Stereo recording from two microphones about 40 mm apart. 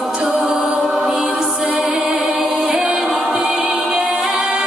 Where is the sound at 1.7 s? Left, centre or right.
Right.